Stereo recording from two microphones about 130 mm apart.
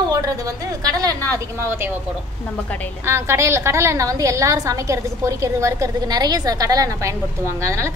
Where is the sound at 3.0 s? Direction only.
20° right (ahead or behind).